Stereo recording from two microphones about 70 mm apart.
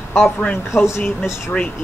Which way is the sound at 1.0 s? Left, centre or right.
Centre.